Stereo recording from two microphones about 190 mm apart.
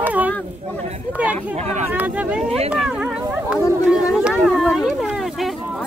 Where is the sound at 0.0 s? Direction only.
10° right (ahead or behind).